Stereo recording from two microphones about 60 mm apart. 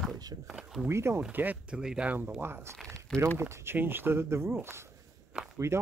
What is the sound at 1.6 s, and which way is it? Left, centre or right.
Speech, centre.